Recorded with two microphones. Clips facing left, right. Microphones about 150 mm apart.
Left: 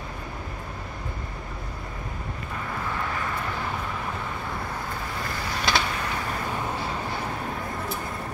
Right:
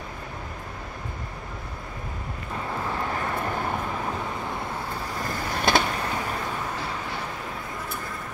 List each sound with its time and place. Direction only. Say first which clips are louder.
5.4 s vehicle: right 4 dB; 50° right (ahead or behind)